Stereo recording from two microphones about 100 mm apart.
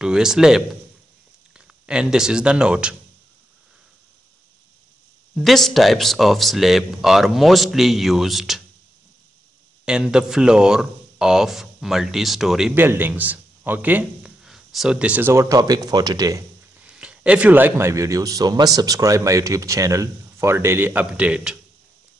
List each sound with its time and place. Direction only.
0.0 s speech: 5° right (ahead or behind)
1.9 s speech: 5° right (ahead or behind)
5.3 s speech: centre (ahead or behind)
9.8 s speech: 10° right (ahead or behind)
12.7 s a man's voice: 20° right (ahead or behind)
14.4 s a sound: 5° right (ahead or behind)
15.3 s speech: 35° right (ahead or behind)
16.8 s speech: 10° right (ahead or behind)